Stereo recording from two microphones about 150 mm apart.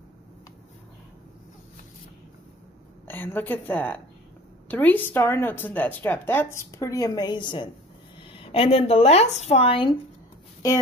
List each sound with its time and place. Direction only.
3.1 s a woman's voice: 15° left (ahead or behind); by 9.9 s 35° left (ahead or behind)